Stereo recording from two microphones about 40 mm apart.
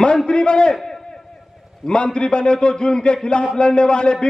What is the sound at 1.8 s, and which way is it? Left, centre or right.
A man's voice, left.